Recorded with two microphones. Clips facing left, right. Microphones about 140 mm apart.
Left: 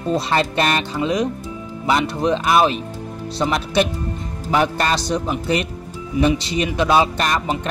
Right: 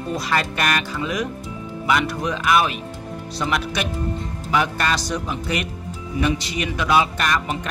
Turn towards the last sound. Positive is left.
turn(degrees=30)  # may be behind; listen again after turning